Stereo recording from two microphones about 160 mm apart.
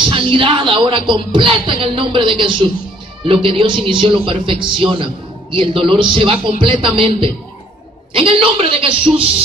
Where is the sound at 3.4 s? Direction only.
30° right (ahead or behind).